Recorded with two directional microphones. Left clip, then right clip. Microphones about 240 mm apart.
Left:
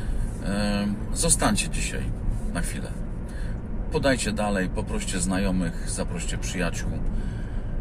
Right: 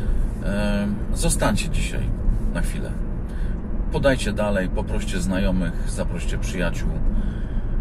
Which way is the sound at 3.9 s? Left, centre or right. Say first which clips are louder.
Right 3 dB; centre.